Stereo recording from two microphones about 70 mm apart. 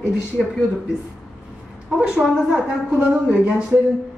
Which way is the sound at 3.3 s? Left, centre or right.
Centre.